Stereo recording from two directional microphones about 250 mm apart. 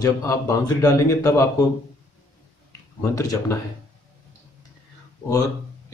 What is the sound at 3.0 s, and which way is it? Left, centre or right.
Speech, centre.